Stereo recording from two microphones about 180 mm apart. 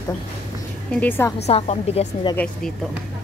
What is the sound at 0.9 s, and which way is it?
Speech, 10° left (ahead or behind).